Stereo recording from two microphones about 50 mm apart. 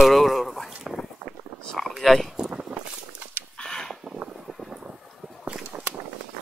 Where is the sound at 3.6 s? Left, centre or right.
Centre.